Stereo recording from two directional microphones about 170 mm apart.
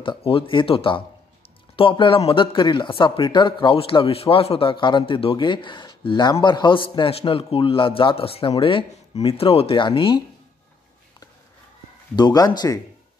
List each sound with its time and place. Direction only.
0.0 s a man's voice: 30° left (ahead or behind)
12.2 s speech: 25° left (ahead or behind)